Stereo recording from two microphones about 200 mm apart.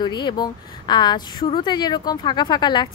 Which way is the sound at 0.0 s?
20° left (ahead or behind).